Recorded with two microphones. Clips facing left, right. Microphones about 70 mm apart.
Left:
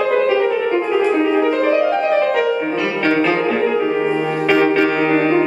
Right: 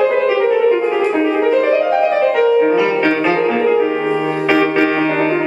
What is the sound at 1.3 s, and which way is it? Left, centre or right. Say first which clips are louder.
Music: right 2 dB; centre.